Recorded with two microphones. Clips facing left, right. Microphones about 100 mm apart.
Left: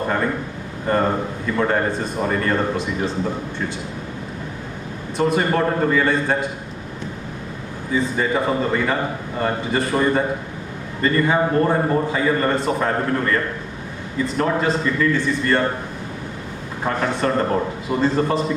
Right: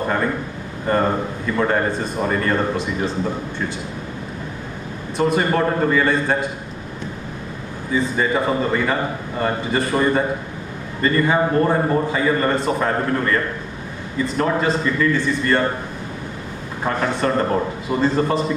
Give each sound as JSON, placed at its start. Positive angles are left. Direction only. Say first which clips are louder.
{"t": 0.0, "sound": "speech", "louder": "right 1 dB", "side_deg": -30}
{"t": 5.1, "sound": "a man's voice", "louder": "right 1 dB", "side_deg": -25}
{"t": 7.9, "sound": "a man's voice", "louder": "right 1 dB", "side_deg": -25}
{"t": 16.8, "sound": "a man's voice", "louder": "right 1 dB", "side_deg": -30}